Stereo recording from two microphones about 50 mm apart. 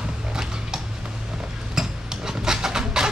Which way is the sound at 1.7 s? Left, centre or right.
Centre.